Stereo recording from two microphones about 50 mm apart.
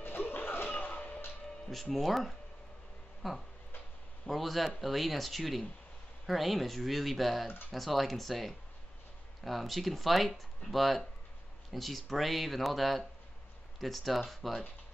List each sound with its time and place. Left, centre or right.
0.0 s music: left
1.7 s speech: centre